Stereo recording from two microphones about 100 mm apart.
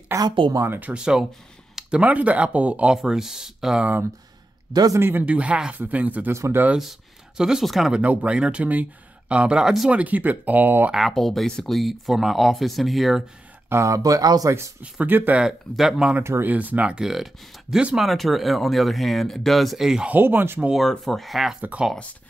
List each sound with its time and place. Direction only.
0.1 s speech: 30° right (ahead or behind)
0.7 s speech: 15° right (ahead or behind)
4.9 s speech: 20° right (ahead or behind)
6.3 s speech: 30° right (ahead or behind)
6.8 s speech: 5° right (ahead or behind); by 10.9 s 20° right (ahead or behind)
10.9 s speech: centre (ahead or behind)
13.7 s speech: 30° right (ahead or behind)
14.8 s speech: 15° right (ahead or behind)
15.4 s speech: 5° right (ahead or behind)
16.2 s speech: 25° right (ahead or behind); by 20.1 s 5° right (ahead or behind)
20.1 s speech: 20° right (ahead or behind)
20.7 s speech: centre (ahead or behind)